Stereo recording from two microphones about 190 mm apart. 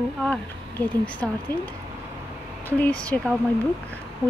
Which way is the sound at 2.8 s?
5° left (ahead or behind).